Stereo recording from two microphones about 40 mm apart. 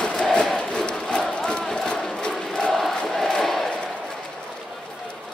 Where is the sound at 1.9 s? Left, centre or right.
Left.